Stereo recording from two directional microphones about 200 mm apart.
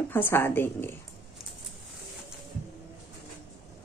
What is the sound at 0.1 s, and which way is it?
Speech, 10° left (ahead or behind).